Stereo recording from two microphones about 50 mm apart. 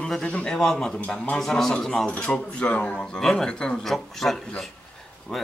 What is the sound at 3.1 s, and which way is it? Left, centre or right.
A man's voice, centre.